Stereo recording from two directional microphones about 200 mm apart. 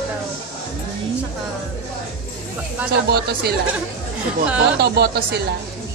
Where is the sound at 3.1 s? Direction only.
50° right (ahead or behind).